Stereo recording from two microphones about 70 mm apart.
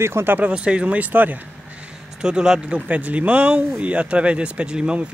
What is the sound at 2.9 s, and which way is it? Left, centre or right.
Speech, right.